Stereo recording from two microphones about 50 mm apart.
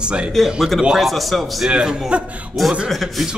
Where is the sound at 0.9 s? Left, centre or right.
Centre.